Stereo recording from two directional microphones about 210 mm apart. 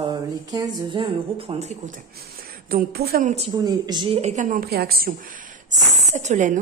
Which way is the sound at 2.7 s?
45° right (ahead or behind).